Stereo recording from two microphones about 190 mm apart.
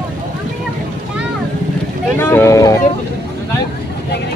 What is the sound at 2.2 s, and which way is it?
Boat, 10° left (ahead or behind).